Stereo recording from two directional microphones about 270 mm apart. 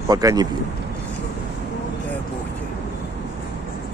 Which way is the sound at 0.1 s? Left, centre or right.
Centre.